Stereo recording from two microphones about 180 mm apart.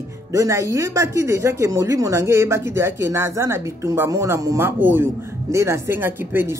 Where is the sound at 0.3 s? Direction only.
15° right (ahead or behind).